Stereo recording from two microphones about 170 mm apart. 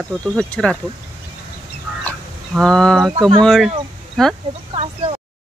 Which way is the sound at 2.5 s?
5° left (ahead or behind).